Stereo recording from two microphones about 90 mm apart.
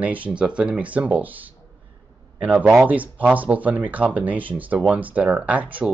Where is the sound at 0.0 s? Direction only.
15° right (ahead or behind).